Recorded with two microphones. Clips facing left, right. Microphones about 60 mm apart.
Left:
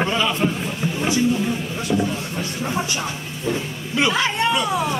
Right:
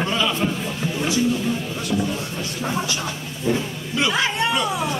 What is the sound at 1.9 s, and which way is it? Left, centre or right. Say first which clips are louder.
Speech: left 2 dB; centre.